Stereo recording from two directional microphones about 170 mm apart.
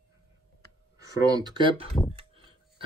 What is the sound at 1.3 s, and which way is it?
Speech, 25° right (ahead or behind).